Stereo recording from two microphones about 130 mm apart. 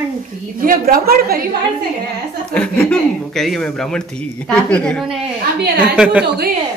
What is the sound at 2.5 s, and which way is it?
Speech, 10° left (ahead or behind).